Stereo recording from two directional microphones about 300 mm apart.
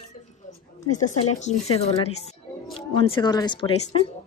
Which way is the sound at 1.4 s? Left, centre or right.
Left.